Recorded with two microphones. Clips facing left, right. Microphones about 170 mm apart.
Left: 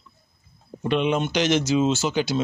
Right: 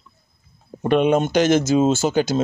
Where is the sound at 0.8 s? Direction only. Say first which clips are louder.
Right 5 dB; 50° right (ahead or behind).